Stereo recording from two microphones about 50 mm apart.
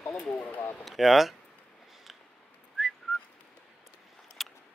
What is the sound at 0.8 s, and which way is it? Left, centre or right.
Speech, centre.